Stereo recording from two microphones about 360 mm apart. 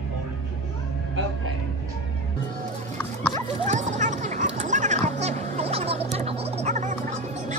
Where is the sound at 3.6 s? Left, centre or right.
Centre.